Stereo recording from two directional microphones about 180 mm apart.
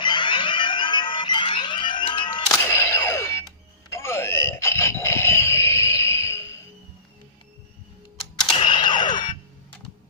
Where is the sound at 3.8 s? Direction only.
15° left (ahead or behind).